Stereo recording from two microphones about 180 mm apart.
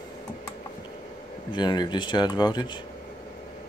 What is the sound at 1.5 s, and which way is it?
Speech, 25° left (ahead or behind).